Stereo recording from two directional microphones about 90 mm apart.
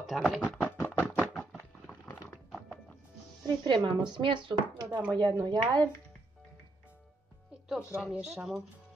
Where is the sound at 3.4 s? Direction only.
55° right (ahead or behind).